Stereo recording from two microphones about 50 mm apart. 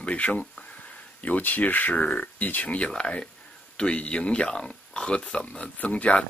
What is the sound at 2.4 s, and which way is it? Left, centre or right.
Speech, left.